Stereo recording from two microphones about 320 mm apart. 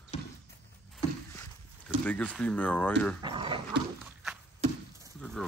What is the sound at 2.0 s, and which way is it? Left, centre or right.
Speech, centre.